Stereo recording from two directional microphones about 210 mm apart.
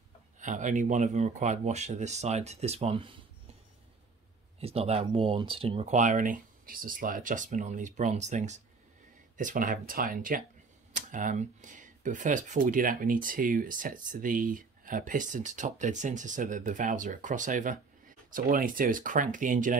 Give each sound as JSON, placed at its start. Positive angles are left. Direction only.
{"t": 0.4, "sound": "speech", "side_deg": -35}
{"t": 4.6, "sound": "speech", "side_deg": -30}